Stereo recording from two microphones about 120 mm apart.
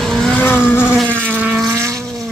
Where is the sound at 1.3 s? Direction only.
10° right (ahead or behind).